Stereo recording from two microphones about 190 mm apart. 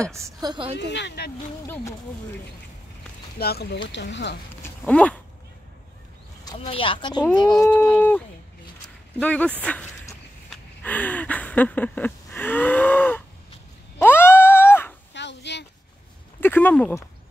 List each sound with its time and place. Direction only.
0.1 s a woman's voice: 20° right (ahead or behind)
0.7 s speech: 65° left (ahead or behind)
3.3 s speech: 55° left (ahead or behind)
3.9 s speech: 70° left (ahead or behind)
4.6 s a sound: 5° left (ahead or behind)
6.6 s speech: 30° left (ahead or behind)
7.7 s speech: 10° left (ahead or behind)
9.2 s speech: 10° left (ahead or behind)
9.6 s a sound: 5° left (ahead or behind)
15.1 s a sound: 65° left (ahead or behind)
16.3 s speech: 10° left (ahead or behind)